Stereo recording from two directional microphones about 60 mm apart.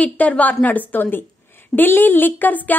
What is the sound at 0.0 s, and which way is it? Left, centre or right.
A woman's voice, left.